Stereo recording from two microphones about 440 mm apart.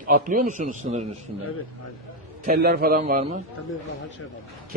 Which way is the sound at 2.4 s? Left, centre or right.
Right.